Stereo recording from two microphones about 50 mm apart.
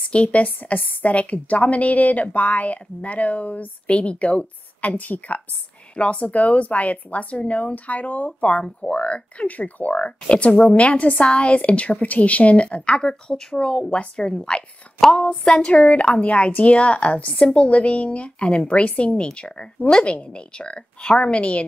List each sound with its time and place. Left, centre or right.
0.1 s a woman's voice: left
15.2 s a sound: centre
15.7 s a woman's voice: left